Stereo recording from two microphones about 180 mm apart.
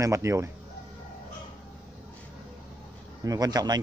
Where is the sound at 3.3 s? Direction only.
20° right (ahead or behind).